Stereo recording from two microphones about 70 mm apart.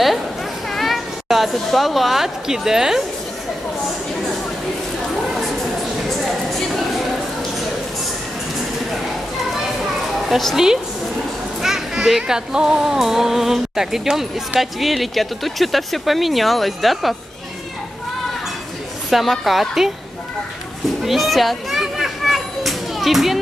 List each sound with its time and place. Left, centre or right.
0.7 s speech: centre
6.0 s a sound: centre
10.1 s a child's voice: centre
19.0 s a child's voice: centre
21.0 s children playing: centre